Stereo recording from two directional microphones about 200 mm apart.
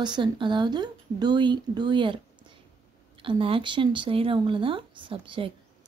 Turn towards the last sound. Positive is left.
turn(degrees=-25)  # may be behind; listen again after turning